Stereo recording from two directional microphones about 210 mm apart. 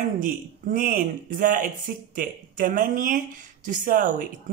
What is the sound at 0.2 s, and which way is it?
A woman's voice, 40° right (ahead or behind).